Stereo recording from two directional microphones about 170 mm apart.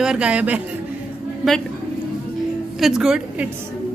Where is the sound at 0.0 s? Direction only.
5° right (ahead or behind).